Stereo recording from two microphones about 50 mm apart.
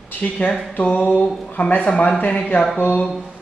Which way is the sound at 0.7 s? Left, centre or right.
Left.